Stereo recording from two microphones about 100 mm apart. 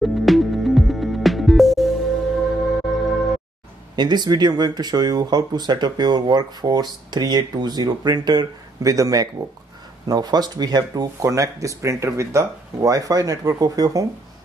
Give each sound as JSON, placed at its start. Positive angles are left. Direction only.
{"t": 0.0, "sound": "music", "side_deg": 0}
{"t": 3.9, "sound": "speech", "side_deg": -45}